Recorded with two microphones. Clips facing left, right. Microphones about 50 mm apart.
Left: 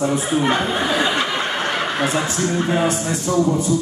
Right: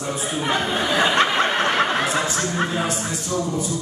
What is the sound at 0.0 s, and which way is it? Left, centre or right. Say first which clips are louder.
Speech: left 7 dB; left.